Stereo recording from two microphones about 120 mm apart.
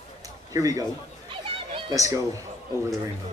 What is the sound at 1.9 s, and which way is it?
Speech, 25° right (ahead or behind).